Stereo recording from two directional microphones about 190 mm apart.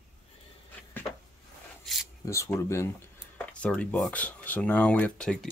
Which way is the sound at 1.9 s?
Centre (ahead or behind).